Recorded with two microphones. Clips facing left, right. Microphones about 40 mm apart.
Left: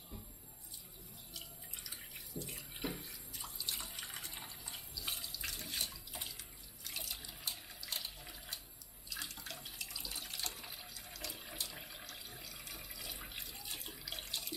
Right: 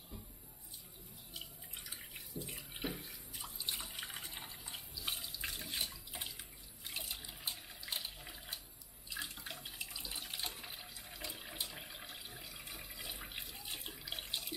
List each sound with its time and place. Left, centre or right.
1.3 s drip: centre
2.0 s water: centre
2.9 s bathtub: centre
3.8 s water: centre
9.1 s water tap: centre
12.1 s water: centre